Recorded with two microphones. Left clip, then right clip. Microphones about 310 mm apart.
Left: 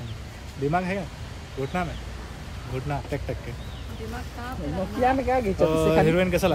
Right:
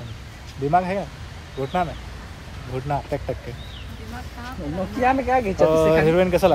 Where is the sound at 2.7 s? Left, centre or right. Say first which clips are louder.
Right 3 dB; centre.